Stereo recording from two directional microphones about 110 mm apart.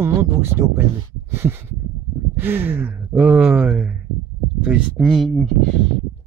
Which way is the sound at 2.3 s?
20° right (ahead or behind).